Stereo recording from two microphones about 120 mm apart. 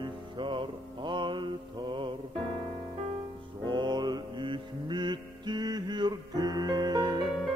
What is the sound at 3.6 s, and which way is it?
Mantra, 40° right (ahead or behind).